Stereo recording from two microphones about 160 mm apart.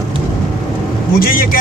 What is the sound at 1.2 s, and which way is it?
Speech, 65° left (ahead or behind).